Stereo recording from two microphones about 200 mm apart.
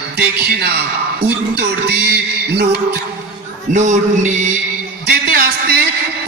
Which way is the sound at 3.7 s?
35° right (ahead or behind).